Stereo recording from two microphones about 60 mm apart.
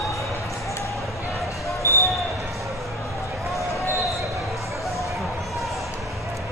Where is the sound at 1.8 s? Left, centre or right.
Left.